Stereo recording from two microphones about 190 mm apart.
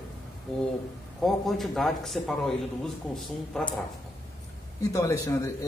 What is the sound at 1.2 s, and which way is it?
A man's voice, centre (ahead or behind).